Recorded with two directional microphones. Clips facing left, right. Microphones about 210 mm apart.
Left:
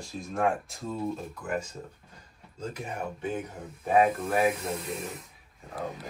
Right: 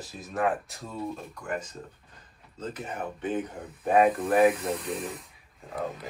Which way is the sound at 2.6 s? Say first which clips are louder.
Even; 10° left (ahead or behind).